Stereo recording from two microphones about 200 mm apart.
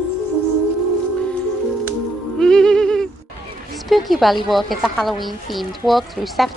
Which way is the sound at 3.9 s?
Centre (ahead or behind).